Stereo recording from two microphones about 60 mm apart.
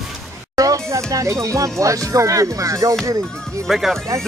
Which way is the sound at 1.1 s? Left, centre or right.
Right.